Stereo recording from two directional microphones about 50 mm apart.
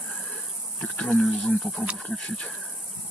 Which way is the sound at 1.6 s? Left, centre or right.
Left.